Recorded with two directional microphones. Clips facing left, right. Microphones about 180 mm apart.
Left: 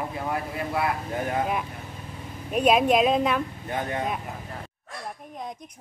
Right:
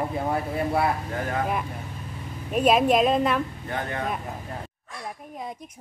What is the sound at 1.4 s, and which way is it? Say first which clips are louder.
Speech: even; centre (ahead or behind).